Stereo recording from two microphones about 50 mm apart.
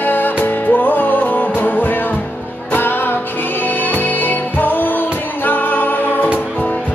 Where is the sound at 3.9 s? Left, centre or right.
Left.